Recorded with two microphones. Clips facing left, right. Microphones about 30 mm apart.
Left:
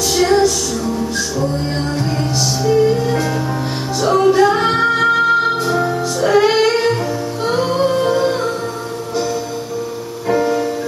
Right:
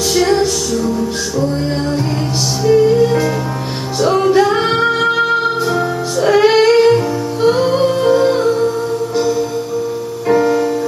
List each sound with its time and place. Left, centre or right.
0.1 s music: centre
2.6 s music: centre
7.4 s humming: centre
10.2 s music: centre